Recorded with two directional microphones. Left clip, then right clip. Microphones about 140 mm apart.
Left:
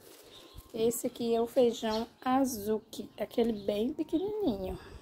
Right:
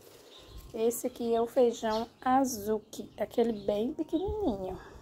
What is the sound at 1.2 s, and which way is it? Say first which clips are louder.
A woman's voice: right 1 dB; 15° left (ahead or behind).